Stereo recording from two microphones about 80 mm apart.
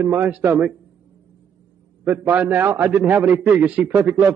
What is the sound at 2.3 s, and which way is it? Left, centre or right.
A man's voice, right.